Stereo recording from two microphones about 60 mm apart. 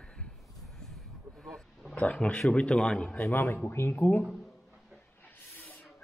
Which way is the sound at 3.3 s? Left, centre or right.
Left.